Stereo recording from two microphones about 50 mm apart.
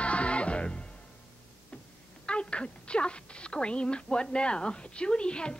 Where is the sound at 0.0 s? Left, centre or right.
Left.